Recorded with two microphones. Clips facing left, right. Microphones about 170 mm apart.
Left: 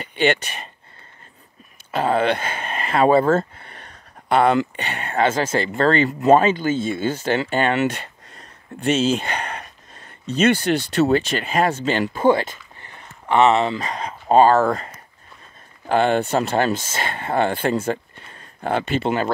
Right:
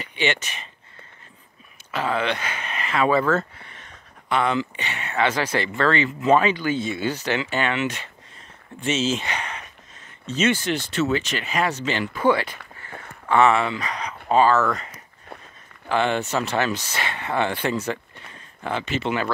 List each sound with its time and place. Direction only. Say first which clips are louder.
0.0 s speech: left 6 dB; 50° left (ahead or behind)
2.1 s speech: left 6 dB; 50° left (ahead or behind)
2.6 s a sound: left 5 dB; 45° left (ahead or behind)
4.6 s speech: left 4 dB; 55° left (ahead or behind)
11.0 s speech: left 5 dB; 35° left (ahead or behind)
11.2 s speech: left 4 dB; 50° left (ahead or behind)
13.3 s speech: left 2 dB; 20° left (ahead or behind)
14.3 s speech: left 4 dB; 45° left (ahead or behind)
14.6 s speech: left 4 dB; 30° left (ahead or behind)
15.9 s speech: left 4 dB; 45° left (ahead or behind)